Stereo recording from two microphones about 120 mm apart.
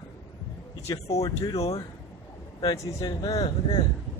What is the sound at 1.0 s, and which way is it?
Speech, 55° left (ahead or behind).